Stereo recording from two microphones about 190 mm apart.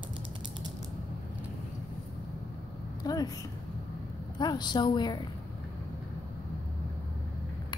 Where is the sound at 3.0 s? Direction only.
20° left (ahead or behind).